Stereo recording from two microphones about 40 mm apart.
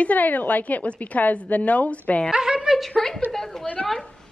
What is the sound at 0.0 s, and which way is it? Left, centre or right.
A woman's voice, left.